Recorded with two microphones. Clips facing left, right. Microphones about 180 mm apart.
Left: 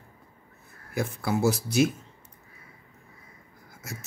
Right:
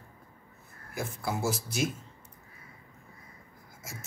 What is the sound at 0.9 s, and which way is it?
Speech, 70° left (ahead or behind).